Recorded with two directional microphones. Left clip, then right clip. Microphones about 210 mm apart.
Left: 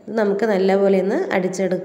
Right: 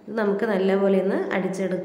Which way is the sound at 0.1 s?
25° left (ahead or behind).